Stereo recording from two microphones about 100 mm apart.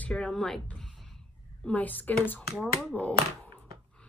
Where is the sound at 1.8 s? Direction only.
15° left (ahead or behind).